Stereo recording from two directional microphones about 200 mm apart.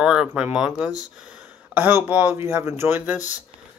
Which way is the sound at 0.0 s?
5° right (ahead or behind).